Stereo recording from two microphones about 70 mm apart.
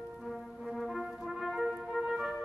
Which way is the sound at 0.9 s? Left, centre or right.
Centre.